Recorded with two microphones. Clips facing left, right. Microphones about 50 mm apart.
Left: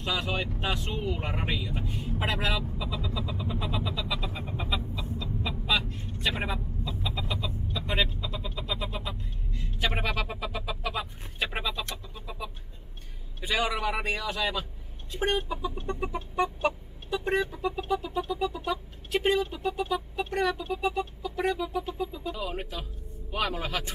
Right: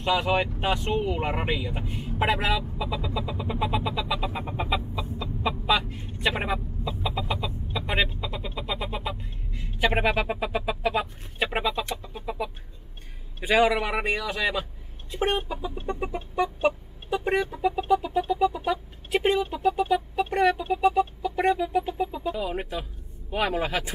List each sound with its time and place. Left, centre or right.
0.1 s speech: centre
4.0 s chicken: centre
7.4 s a sound: centre
12.1 s chicken: centre
13.4 s a man's voice: centre
15.3 s chicken: right
15.9 s chicken: centre
17.4 s music: centre
18.2 s a sound: centre
21.0 s music: centre
23.3 s speech: centre